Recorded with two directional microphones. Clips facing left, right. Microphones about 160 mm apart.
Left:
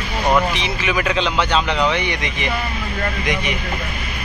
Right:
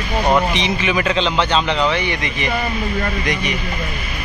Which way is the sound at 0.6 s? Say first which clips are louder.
Right 3 dB; 5° left (ahead or behind).